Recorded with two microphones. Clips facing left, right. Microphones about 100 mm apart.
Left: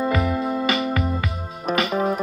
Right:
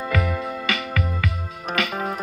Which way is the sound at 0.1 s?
25° left (ahead or behind).